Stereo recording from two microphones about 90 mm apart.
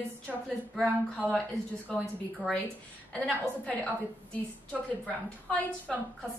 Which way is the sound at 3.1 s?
10° left (ahead or behind).